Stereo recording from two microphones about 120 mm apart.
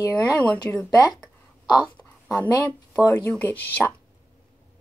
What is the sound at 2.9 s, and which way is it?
Speech, 30° left (ahead or behind).